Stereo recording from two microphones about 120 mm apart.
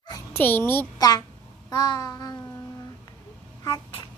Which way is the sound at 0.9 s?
30° left (ahead or behind).